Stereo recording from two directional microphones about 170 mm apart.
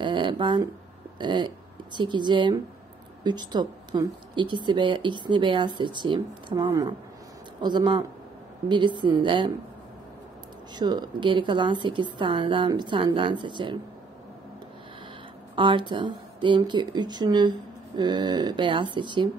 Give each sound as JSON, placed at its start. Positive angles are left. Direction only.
{"t": 0.0, "sound": "a sound", "side_deg": -30}
{"t": 1.1, "sound": "speech", "side_deg": -25}
{"t": 10.8, "sound": "speech", "side_deg": -25}
{"t": 15.5, "sound": "speech", "side_deg": -30}